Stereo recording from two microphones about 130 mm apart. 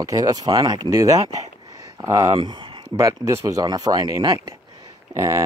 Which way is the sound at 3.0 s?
25° right (ahead or behind).